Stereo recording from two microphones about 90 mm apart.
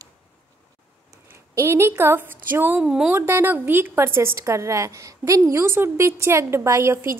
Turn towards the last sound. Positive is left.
turn(degrees=-30)  # may be behind; listen again after turning